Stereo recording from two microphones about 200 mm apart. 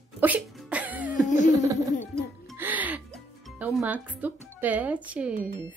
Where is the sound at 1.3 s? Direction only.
40° left (ahead or behind).